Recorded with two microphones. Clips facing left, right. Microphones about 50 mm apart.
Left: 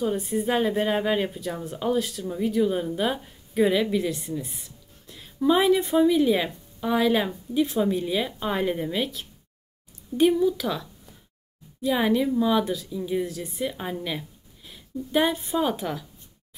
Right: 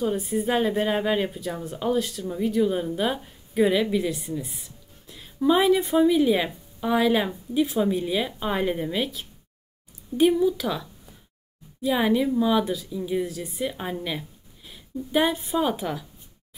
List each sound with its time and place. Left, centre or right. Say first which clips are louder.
0.0 s a woman's voice: even; centre